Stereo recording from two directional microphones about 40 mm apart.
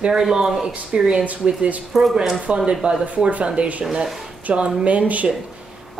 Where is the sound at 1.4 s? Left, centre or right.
Right.